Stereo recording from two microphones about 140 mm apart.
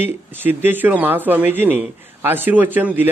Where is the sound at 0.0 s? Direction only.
15° right (ahead or behind).